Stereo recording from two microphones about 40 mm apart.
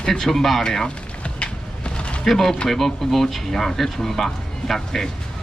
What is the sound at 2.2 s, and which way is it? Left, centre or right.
Speech, centre.